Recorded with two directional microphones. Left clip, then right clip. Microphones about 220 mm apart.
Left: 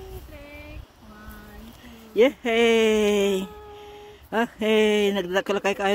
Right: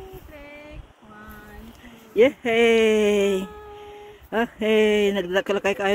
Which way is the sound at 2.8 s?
Centre (ahead or behind).